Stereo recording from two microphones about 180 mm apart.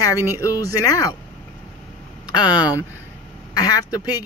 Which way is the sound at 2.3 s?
25° left (ahead or behind).